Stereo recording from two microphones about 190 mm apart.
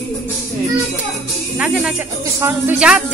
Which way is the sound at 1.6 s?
5° right (ahead or behind).